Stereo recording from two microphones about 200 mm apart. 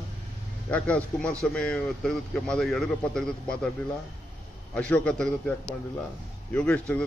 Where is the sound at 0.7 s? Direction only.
5° left (ahead or behind).